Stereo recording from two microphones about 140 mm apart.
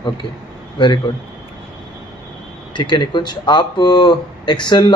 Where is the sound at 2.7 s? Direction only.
35° left (ahead or behind).